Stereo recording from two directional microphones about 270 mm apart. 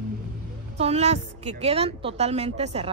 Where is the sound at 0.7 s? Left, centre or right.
Right.